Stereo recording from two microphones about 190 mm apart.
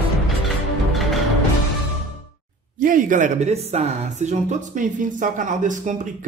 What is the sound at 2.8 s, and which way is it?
Speech, 45° right (ahead or behind).